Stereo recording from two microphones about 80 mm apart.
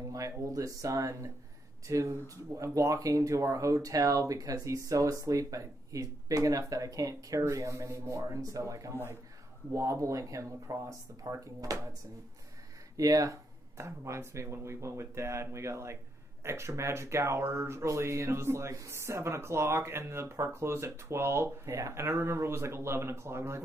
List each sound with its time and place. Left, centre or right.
0.1 s speech: right
12.9 s speech: right